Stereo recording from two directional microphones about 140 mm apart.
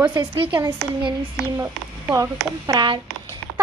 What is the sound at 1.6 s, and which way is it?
A woman's voice, 25° right (ahead or behind).